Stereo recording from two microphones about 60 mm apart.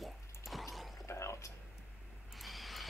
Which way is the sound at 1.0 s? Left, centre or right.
Left.